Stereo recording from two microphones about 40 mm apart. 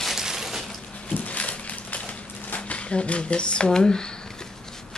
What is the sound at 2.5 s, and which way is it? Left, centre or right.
Speech, left.